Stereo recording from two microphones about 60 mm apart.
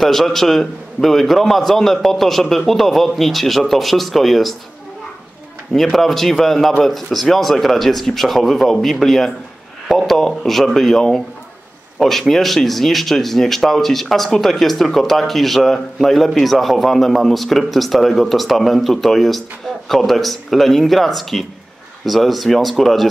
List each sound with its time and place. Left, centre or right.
0.0 s speech: centre
5.7 s speech: centre